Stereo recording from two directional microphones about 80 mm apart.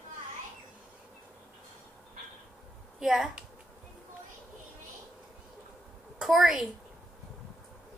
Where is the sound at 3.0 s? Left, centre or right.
Centre.